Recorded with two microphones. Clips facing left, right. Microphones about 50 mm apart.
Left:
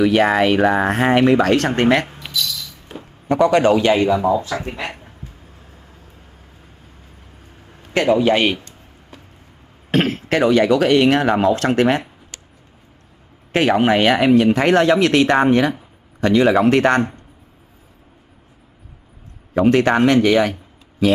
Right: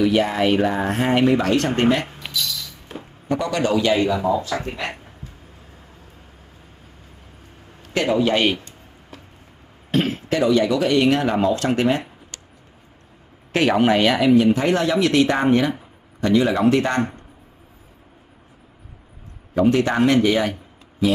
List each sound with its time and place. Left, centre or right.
0.0 s speech: left
2.4 s music: centre
3.3 s speech: left
4.5 s speech: centre
4.8 s a sound: centre
8.1 s speech: centre
9.1 s a sound: centre
9.8 s speech: left
11.5 s speech: left
12.3 s a sound: left
13.5 s speech: centre
13.9 s speech: left
14.2 s speech: left
19.6 s speech: left